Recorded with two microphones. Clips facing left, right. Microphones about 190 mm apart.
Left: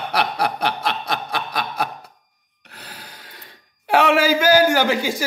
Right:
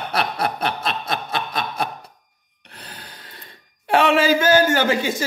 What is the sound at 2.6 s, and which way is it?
Gasp, 5° left (ahead or behind).